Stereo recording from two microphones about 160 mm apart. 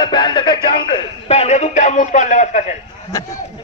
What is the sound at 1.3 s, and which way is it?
A man's voice, 45° left (ahead or behind).